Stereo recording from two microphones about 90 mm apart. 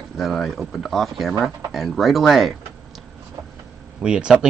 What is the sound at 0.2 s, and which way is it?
Speech, centre (ahead or behind).